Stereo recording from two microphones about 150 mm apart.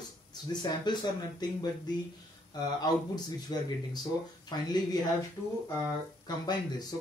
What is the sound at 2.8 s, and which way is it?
Speech, 25° left (ahead or behind).